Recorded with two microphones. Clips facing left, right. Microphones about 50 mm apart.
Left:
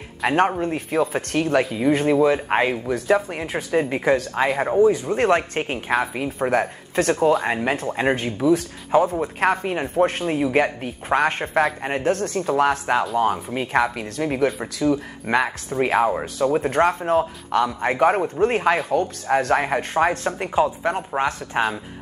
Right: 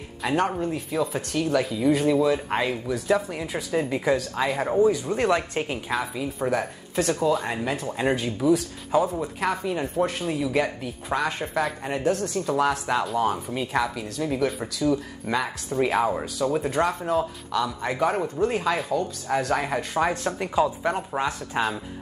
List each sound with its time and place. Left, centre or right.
0.6 s speech: left
4.6 s speech: left
5.1 s speech: left
16.0 s speech: left
16.7 s speech: left; by 21.2 s centre
21.2 s speech: left